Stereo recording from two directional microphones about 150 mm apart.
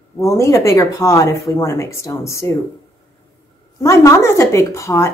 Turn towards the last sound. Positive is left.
turn(degrees=20)  # may be behind; listen again after turning